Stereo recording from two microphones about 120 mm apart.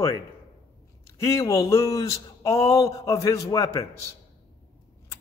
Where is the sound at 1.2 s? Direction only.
25° left (ahead or behind).